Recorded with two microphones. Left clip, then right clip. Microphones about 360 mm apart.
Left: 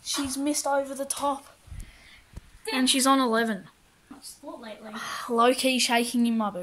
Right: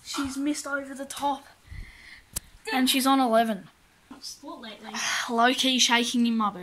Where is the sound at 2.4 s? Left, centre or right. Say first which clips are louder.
Right 14 dB; right.